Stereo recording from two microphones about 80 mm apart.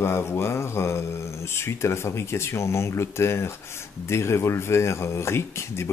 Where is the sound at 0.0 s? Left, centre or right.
Left.